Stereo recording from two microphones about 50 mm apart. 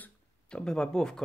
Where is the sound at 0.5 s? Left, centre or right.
Centre.